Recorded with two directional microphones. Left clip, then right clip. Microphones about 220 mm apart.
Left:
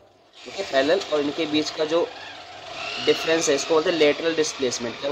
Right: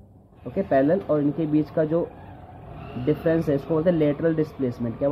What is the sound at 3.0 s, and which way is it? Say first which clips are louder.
Speech: left 2 dB; 15° left (ahead or behind).